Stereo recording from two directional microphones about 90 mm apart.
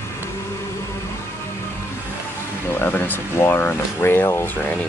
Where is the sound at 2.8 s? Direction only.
20° left (ahead or behind).